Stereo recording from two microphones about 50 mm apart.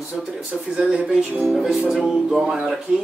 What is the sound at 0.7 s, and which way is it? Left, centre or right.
Speech, centre.